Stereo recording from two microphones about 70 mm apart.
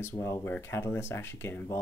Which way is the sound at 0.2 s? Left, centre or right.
Left.